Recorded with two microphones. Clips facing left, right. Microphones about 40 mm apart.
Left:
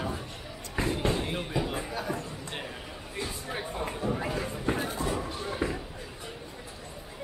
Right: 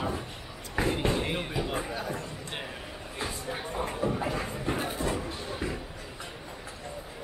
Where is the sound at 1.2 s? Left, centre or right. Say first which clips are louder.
Right 1 dB; right.